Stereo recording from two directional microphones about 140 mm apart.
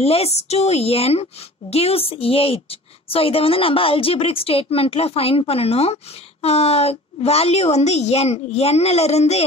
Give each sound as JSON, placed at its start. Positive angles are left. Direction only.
{"t": 0.0, "sound": "a woman's voice", "side_deg": 45}